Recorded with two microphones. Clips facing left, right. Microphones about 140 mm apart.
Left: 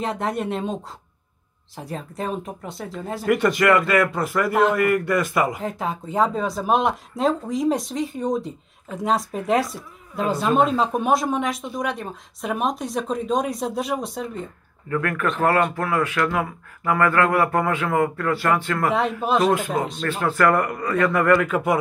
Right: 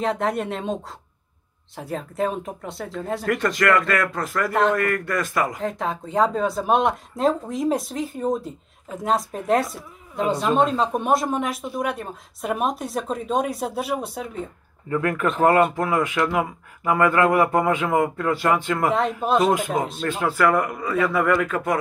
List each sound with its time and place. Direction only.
0.0 s speech: centre (ahead or behind)
14.9 s speech: 20° right (ahead or behind)
18.9 s speech: 5° left (ahead or behind)
19.5 s speech: 15° right (ahead or behind); by 21.7 s 5° left (ahead or behind)